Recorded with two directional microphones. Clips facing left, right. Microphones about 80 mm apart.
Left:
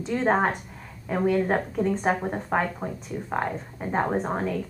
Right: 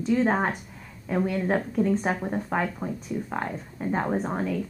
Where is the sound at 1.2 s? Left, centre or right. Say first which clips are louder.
Left 4 dB; centre.